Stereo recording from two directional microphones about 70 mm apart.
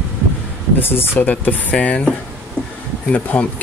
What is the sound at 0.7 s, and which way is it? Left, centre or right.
Speech, left.